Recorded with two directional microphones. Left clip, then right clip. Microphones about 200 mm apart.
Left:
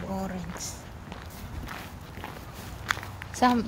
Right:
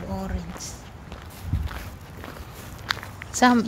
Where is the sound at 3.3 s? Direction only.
30° right (ahead or behind).